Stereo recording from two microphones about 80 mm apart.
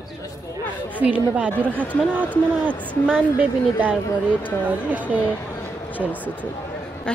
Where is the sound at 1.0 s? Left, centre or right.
Centre.